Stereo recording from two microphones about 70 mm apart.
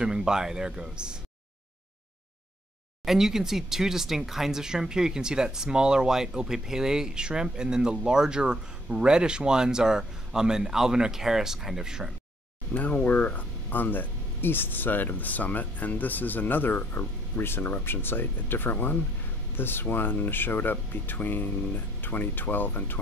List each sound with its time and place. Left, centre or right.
0.0 s speech: centre
3.1 s speech: centre
12.7 s speech: left